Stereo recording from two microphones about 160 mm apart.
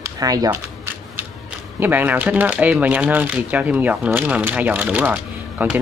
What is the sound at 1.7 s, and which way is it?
Speech, 10° right (ahead or behind).